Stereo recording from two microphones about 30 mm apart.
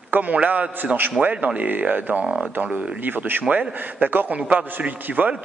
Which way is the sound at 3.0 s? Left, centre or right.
Right.